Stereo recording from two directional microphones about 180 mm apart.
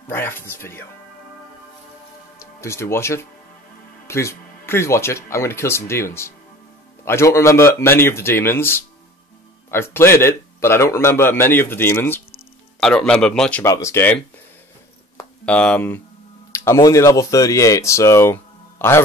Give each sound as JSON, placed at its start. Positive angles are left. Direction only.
{"t": 0.1, "sound": "speech", "side_deg": 10}
{"t": 2.3, "sound": "speech", "side_deg": 15}
{"t": 13.7, "sound": "speech", "side_deg": 15}
{"t": 15.4, "sound": "speech", "side_deg": 5}